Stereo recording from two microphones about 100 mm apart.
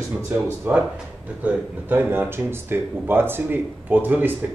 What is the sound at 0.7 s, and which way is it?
Speech, 15° right (ahead or behind).